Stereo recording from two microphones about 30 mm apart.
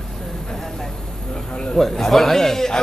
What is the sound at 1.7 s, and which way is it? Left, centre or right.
A man's voice, centre.